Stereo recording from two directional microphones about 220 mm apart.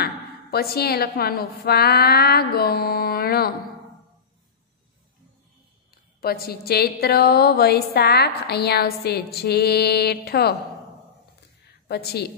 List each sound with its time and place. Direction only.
0.0 s a woman's voice: 45° left (ahead or behind)
6.2 s a woman's voice: 45° left (ahead or behind)
11.9 s a woman's voice: 45° left (ahead or behind)